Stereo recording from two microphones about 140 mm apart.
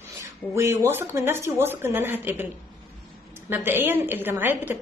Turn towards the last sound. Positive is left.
turn(degrees=-15)  # may be behind; listen again after turning